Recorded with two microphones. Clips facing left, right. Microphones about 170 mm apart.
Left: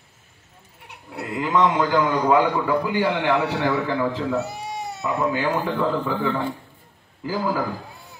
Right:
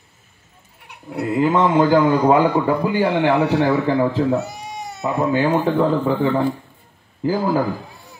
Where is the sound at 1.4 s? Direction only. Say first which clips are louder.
Right 4 dB; 30° right (ahead or behind).